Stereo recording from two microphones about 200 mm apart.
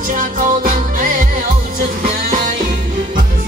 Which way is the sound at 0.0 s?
40° right (ahead or behind).